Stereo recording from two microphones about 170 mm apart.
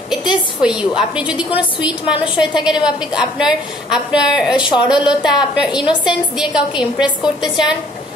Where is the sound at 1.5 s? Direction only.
30° left (ahead or behind).